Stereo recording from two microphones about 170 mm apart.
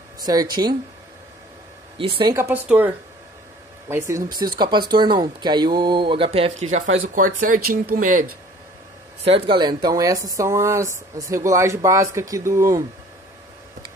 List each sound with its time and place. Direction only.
0.2 s speech: 20° right (ahead or behind)
2.0 s speech: 30° right (ahead or behind)
2.3 s speech: 10° right (ahead or behind)
3.9 s speech: 20° right (ahead or behind); by 6.8 s 40° right (ahead or behind)
7.2 s speech: 50° right (ahead or behind)
9.2 s speech: 30° right (ahead or behind)